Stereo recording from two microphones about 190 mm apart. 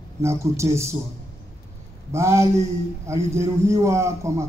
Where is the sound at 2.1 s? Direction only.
15° right (ahead or behind).